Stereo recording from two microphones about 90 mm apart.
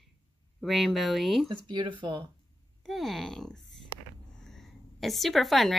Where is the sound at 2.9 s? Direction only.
Centre (ahead or behind).